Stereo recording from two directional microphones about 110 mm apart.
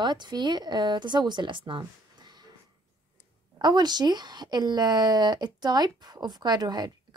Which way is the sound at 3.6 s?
40° right (ahead or behind).